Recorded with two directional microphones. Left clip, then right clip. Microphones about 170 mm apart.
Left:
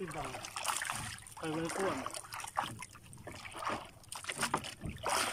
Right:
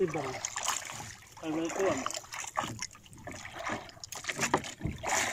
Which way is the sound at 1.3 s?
15° right (ahead or behind).